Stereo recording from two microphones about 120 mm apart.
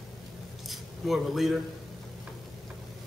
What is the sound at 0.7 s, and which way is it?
Speech, centre (ahead or behind).